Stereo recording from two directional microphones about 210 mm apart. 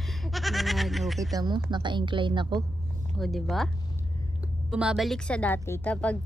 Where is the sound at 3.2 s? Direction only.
Centre (ahead or behind).